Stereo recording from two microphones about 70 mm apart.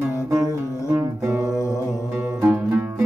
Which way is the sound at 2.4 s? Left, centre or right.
Right.